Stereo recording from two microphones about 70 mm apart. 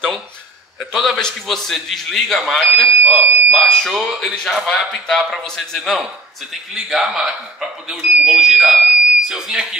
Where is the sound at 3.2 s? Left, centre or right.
Right.